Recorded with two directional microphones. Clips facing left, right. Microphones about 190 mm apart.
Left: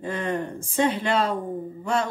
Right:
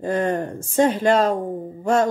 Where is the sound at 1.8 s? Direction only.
45° right (ahead or behind).